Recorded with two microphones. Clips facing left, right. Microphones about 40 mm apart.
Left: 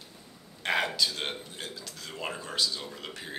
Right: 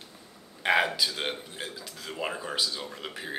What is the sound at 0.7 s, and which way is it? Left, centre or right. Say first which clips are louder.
A man's voice: right 3 dB; centre.